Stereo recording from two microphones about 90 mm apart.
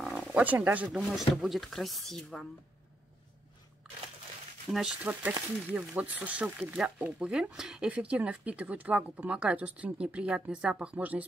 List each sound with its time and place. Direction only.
0.0 s wild animals: centre (ahead or behind)
0.3 s speech: 20° right (ahead or behind)
0.9 s speech: 5° right (ahead or behind)
4.6 s speech: centre (ahead or behind)
5.7 s speech: 15° right (ahead or behind)